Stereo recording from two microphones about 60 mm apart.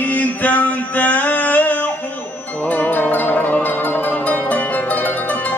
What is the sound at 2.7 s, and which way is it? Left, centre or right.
Zither, left.